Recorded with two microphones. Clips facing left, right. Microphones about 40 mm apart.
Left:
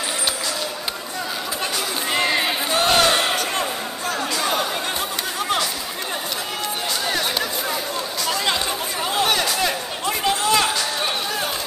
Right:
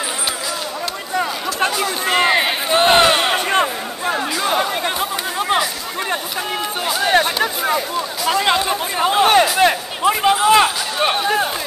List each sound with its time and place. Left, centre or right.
1.8 s battle cry: right
5.4 s chatter: right
8.3 s a sound: centre